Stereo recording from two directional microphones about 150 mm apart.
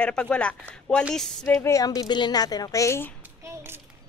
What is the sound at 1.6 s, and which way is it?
A woman's voice, 20° left (ahead or behind).